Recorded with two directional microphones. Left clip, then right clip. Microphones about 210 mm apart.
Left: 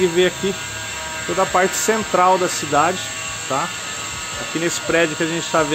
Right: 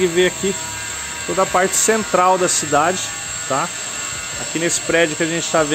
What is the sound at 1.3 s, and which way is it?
Speech, 15° right (ahead or behind).